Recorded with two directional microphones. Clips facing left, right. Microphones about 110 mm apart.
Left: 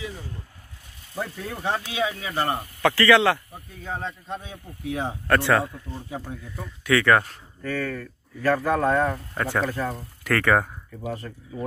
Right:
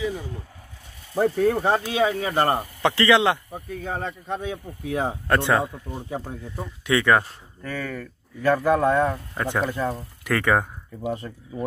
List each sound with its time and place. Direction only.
1.1 s speech: 45° right (ahead or behind)
2.8 s speech: 20° right (ahead or behind)
3.5 s speech: 55° right (ahead or behind)
5.3 s speech: 20° right (ahead or behind)
9.7 s speech: 20° right (ahead or behind)